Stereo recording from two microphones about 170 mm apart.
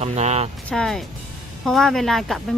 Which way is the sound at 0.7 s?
5° left (ahead or behind).